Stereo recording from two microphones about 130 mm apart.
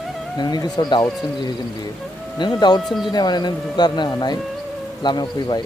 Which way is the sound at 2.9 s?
Centre (ahead or behind).